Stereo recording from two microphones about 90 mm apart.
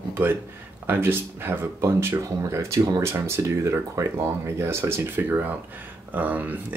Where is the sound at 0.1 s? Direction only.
25° right (ahead or behind).